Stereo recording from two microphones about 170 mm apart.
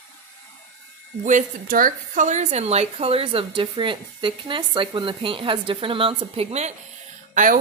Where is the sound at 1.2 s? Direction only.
50° right (ahead or behind).